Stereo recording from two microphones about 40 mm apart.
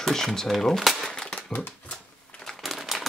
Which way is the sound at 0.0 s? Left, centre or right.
Centre.